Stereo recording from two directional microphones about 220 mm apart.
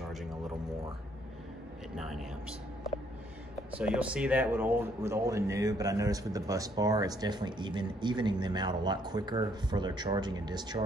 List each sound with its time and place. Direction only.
3.7 s speech: 5° right (ahead or behind)